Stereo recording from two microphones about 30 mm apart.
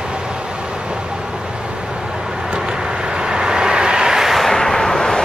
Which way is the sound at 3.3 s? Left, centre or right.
Right.